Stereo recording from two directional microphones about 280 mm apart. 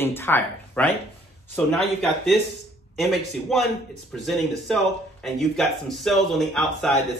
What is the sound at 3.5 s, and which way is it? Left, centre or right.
Speech, centre.